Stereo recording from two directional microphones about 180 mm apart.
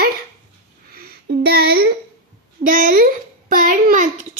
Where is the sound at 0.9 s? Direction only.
60° right (ahead or behind).